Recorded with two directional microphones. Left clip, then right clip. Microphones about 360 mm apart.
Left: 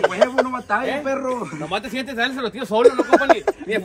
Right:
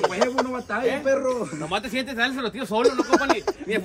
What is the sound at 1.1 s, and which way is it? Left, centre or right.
Speech, centre.